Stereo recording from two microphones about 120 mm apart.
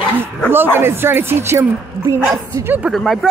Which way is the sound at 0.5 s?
20° right (ahead or behind).